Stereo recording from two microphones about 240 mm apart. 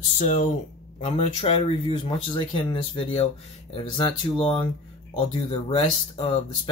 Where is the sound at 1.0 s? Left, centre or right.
Left.